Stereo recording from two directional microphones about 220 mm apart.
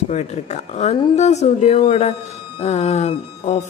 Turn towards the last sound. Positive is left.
turn(degrees=30)  # may be behind; listen again after turning